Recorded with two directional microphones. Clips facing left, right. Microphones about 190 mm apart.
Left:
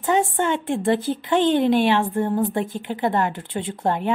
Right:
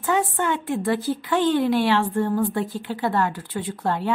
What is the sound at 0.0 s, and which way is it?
A woman's voice, 25° left (ahead or behind).